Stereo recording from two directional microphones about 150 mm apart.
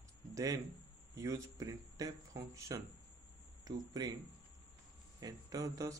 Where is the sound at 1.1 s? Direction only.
20° right (ahead or behind).